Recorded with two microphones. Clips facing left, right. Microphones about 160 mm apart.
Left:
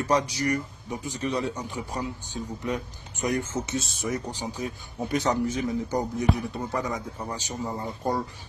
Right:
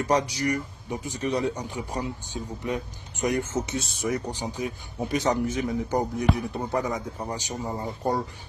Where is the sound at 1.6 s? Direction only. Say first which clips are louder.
Right 1 dB; 15° right (ahead or behind).